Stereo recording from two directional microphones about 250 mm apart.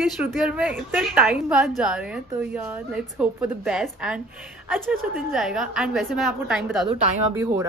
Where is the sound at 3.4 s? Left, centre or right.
Centre.